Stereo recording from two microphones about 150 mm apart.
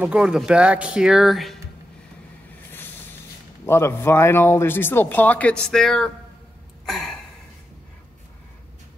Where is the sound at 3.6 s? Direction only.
15° left (ahead or behind).